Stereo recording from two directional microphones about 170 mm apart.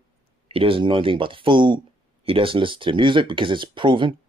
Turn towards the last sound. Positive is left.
turn(degrees=-30)  # may be behind; listen again after turning